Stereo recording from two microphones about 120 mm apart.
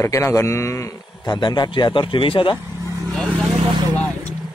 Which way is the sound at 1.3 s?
35° left (ahead or behind).